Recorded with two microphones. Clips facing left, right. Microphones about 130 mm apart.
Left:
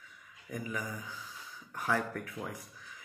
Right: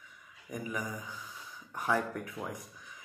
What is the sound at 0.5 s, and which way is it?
Speech, 20° right (ahead or behind).